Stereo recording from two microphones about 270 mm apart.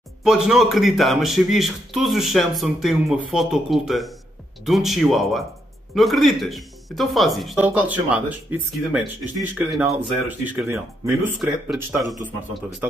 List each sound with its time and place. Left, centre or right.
0.2 s speech: centre